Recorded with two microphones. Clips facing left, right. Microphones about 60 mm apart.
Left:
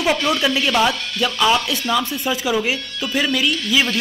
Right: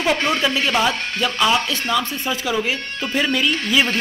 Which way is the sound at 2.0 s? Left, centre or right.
Centre.